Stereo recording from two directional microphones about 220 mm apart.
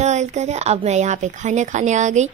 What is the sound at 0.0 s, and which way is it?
Speech, 30° right (ahead or behind).